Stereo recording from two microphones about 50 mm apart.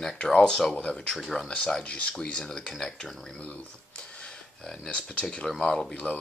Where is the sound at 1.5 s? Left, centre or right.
Centre.